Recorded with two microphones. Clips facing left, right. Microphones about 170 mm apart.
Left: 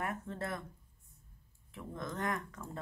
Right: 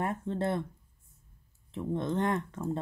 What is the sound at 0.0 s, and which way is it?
Speech, 30° right (ahead or behind).